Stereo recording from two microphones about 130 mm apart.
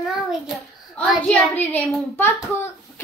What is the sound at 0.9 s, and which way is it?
A child's voice, 10° left (ahead or behind).